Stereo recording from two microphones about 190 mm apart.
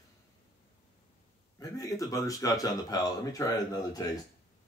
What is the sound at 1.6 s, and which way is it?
Speech, 20° left (ahead or behind).